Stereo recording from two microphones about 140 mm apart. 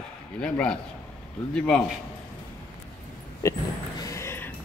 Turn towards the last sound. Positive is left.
turn(degrees=20)  # may be behind; listen again after turning